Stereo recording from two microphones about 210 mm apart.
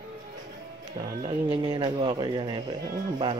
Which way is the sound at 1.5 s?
25° right (ahead or behind).